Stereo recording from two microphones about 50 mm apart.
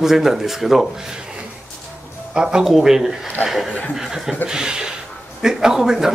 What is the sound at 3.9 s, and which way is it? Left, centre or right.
Chuckle, centre.